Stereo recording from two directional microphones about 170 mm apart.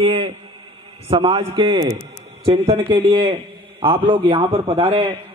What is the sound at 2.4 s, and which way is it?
A man's voice, 40° right (ahead or behind).